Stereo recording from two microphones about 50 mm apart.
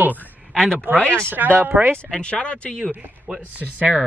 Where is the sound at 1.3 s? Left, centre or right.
Right.